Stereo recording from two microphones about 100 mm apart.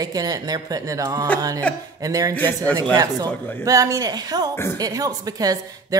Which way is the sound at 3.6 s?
35° right (ahead or behind).